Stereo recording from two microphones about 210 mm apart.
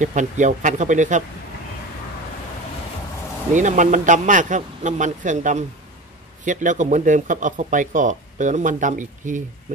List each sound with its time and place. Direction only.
0.0 s speech: 35° right (ahead or behind)
3.5 s speech: 35° right (ahead or behind)